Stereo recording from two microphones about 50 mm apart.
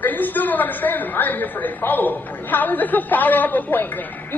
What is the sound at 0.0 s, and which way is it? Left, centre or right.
A man's voice, left.